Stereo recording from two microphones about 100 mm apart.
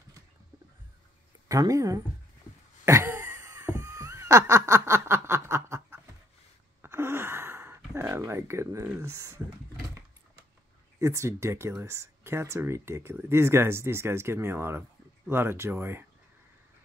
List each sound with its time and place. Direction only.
1.5 s speech: 35° right (ahead or behind)
2.8 s a sound: 25° right (ahead or behind)
3.6 s snicker: 35° right (ahead or behind)
6.8 s a sound: 25° right (ahead or behind)
9.0 s speech: 30° right (ahead or behind)
11.0 s speech: 30° right (ahead or behind)